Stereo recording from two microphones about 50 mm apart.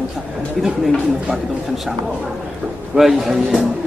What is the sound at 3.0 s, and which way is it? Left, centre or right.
Speech, centre.